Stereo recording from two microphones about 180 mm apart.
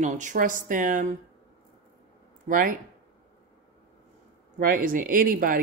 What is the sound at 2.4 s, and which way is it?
Speech, 50° right (ahead or behind).